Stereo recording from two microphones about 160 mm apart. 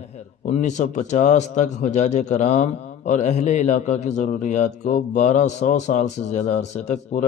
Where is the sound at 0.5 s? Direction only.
50° left (ahead or behind).